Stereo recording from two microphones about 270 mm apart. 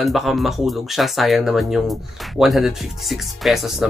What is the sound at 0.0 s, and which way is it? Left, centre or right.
Speech, centre.